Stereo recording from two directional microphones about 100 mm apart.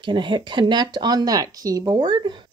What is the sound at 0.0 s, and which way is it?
A woman's voice, 50° right (ahead or behind).